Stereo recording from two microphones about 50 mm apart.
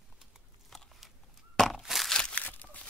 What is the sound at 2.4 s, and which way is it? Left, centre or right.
Tearing, left.